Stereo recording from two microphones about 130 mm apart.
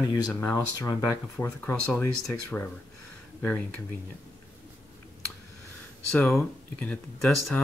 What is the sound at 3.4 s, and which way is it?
Speech, 10° left (ahead or behind).